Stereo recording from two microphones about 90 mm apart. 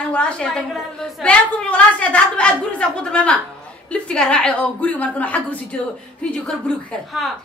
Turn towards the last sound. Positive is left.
turn(degrees=-5)  # may be behind; listen again after turning